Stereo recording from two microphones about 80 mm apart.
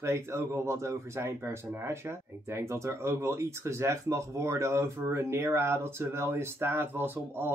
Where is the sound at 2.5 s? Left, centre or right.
Right.